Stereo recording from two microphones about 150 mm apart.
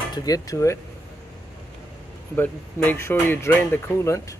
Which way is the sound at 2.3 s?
10° left (ahead or behind).